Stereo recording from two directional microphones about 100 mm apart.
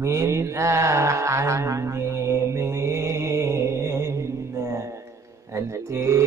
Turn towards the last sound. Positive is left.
turn(degrees=-30)  # may be behind; listen again after turning